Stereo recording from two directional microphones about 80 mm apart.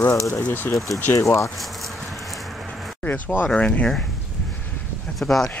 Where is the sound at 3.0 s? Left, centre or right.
Left.